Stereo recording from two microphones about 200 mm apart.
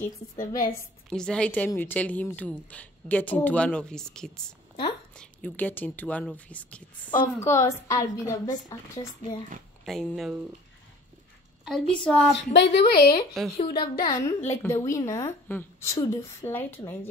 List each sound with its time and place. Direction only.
0.4 s a woman's voice: 45° left (ahead or behind)
1.1 s a woman's voice: 5° left (ahead or behind)
7.1 s a woman's voice: 20° left (ahead or behind)
9.8 s a woman's voice: centre (ahead or behind)
12.0 s a woman's voice: 5° left (ahead or behind)
12.4 s a woman's voice: 60° left (ahead or behind)
13.6 s a woman's voice: 25° left (ahead or behind); by 17.1 s 10° left (ahead or behind)